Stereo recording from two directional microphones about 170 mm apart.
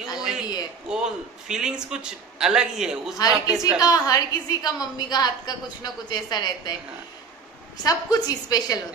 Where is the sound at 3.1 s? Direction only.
20° left (ahead or behind).